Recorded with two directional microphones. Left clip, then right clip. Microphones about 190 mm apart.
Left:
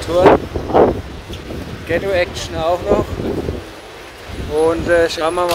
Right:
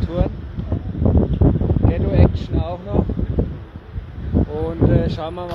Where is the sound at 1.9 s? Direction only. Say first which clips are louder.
Left 6 dB; 5° right (ahead or behind).